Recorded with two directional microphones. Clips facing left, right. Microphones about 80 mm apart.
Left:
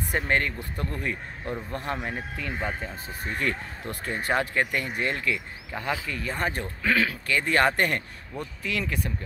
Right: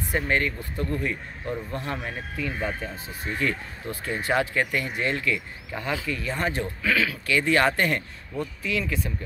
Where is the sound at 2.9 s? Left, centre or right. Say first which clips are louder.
Right 1 dB; left.